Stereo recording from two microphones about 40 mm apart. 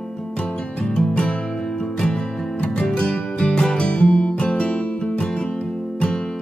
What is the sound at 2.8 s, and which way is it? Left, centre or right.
Music, left.